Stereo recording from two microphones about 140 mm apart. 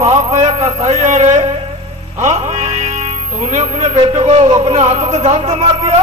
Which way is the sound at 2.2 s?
55° right (ahead or behind).